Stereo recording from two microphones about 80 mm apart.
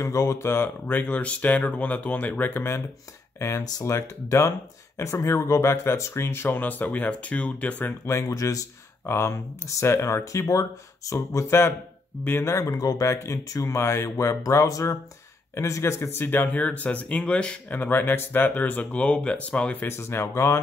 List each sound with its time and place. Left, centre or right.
0.0 s speech: left; by 7.9 s centre
8.0 s speech: left
9.0 s speech: left
16.3 s speech: left
19.9 s speech: left